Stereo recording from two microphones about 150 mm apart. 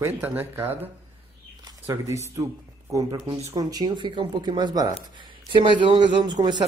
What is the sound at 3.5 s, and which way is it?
Speech, 25° right (ahead or behind).